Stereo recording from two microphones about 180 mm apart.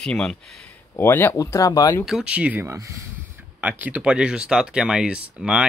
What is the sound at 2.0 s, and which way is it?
Speech, 5° right (ahead or behind).